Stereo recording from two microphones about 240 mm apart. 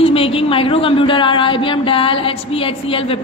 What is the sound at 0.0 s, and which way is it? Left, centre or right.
A man's voice, left.